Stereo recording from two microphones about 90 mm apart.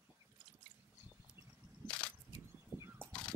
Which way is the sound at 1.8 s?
10° left (ahead or behind).